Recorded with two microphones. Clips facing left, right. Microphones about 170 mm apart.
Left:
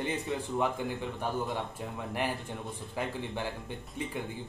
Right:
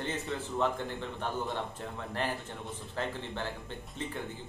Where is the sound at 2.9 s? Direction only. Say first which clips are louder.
Left 1 dB; 10° left (ahead or behind).